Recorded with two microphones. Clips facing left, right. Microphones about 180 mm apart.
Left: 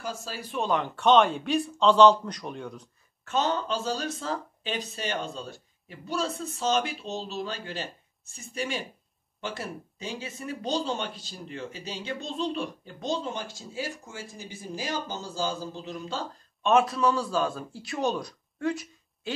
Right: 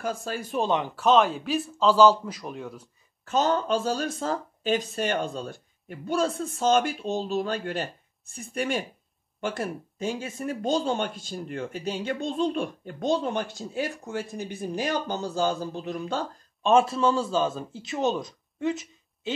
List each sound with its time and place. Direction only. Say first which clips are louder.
0.0 s speech: right 5 dB; 55° right (ahead or behind)
0.6 s a man's voice: right 2 dB; 25° right (ahead or behind)
0.8 s a man's voice: left 2 dB; centre (ahead or behind)
3.3 s speech: right 4 dB; 45° right (ahead or behind); by 13.4 s 60° right (ahead or behind)
13.4 s a man's voice: right 7 dB; centre (ahead or behind)
14.3 s speech: right 7 dB; 60° right (ahead or behind)
16.6 s a man's voice: right 2 dB; 30° right (ahead or behind)